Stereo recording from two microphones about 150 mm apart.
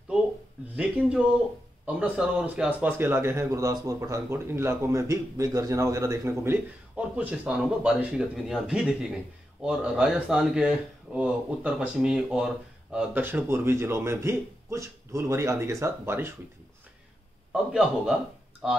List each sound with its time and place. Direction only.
0.7 s speech: 5° right (ahead or behind)
17.5 s a man's voice: 5° right (ahead or behind)